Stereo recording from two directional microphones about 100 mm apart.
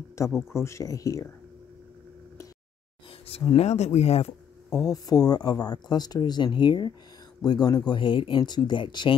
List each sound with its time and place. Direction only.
0.5 s speech: 25° left (ahead or behind)
3.3 s speech: 85° left
4.7 s speech: 35° left (ahead or behind); by 9.1 s 55° left (ahead or behind)